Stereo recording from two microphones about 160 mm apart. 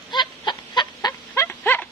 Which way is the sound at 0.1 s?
30° left (ahead or behind).